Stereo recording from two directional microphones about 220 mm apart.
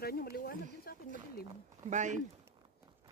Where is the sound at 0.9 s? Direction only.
45° left (ahead or behind).